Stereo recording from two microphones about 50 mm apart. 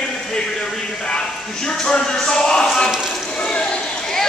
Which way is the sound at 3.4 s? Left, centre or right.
Left.